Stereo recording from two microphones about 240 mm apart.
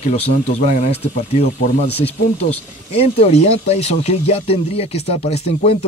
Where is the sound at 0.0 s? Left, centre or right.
Left.